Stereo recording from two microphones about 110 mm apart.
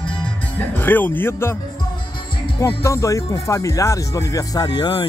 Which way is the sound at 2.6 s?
25° left (ahead or behind).